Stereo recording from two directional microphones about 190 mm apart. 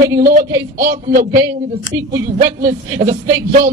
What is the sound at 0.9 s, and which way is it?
Speech, 45° right (ahead or behind).